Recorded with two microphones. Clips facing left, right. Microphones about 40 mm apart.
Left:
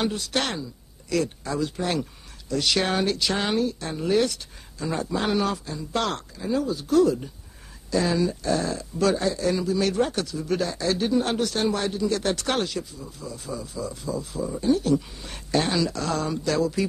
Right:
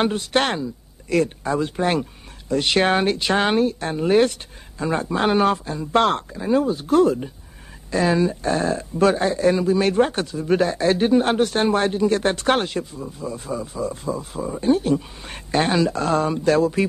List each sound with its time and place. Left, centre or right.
0.0 s speech: right